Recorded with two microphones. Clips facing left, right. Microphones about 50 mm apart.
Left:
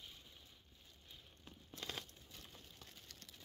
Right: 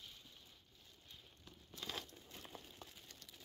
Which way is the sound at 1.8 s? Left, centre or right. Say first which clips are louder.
Right 1 dB; left.